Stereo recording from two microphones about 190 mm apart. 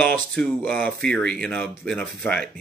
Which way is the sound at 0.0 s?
5° left (ahead or behind).